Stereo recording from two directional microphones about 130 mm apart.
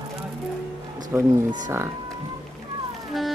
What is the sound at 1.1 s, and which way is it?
Speech, 15° right (ahead or behind).